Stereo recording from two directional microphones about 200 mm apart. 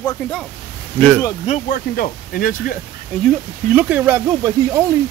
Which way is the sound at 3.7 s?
5° right (ahead or behind).